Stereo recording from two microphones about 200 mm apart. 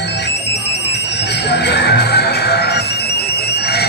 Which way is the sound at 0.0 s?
60° left (ahead or behind).